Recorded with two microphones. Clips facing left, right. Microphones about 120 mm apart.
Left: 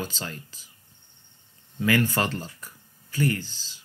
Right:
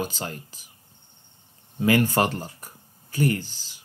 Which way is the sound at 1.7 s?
15° right (ahead or behind).